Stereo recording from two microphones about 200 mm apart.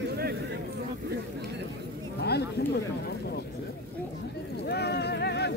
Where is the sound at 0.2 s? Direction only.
50° right (ahead or behind).